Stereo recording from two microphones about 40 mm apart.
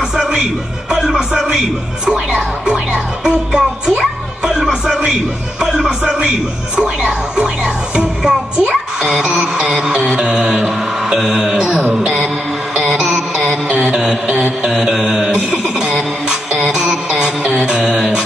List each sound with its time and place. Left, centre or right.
0.1 s speech: centre
2.0 s music: centre
12.0 s mantra: right
12.7 s music: centre
13.5 s music: right
14.7 s music: centre
16.7 s music: centre
17.5 s music: right
17.7 s a sound: centre